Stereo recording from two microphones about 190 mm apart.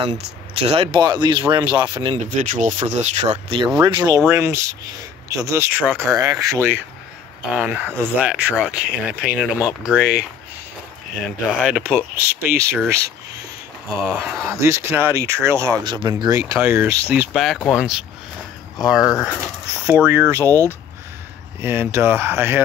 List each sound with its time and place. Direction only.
0.6 s speech: 30° right (ahead or behind)
2.2 s speech: 45° right (ahead or behind); by 10.2 s 5° right (ahead or behind)
11.2 s speech: centre (ahead or behind)
14.0 s speech: 5° right (ahead or behind)